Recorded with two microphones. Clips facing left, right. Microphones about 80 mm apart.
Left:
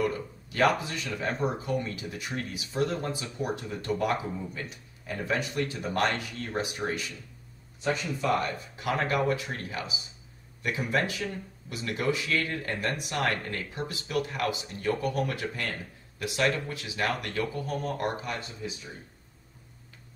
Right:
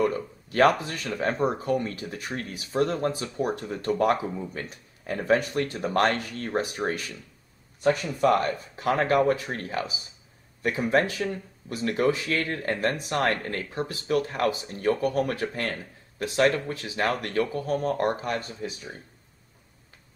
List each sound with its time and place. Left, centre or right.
0.0 s speech: right